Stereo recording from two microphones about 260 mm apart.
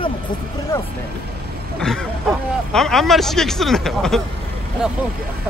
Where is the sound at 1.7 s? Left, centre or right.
Centre.